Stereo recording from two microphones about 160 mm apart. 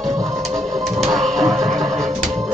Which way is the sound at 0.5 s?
Centre (ahead or behind).